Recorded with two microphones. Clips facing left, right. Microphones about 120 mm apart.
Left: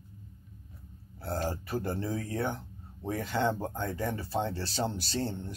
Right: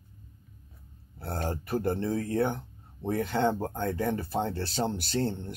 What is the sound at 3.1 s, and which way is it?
Speech, 60° right (ahead or behind).